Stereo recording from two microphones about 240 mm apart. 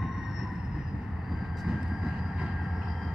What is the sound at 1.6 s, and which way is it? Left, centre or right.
Vehicle, centre.